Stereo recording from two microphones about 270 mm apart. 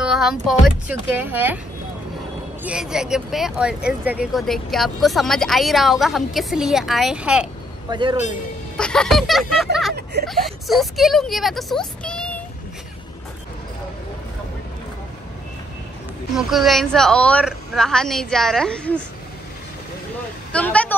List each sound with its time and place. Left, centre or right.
0.0 s speech: centre
2.6 s speech: centre
7.9 s a man's voice: centre
8.7 s speech: centre
16.3 s speech: centre
20.5 s speech: centre